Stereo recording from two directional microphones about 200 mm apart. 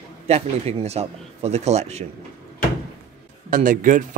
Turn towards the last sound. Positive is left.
turn(degrees=-40)  # may be behind; listen again after turning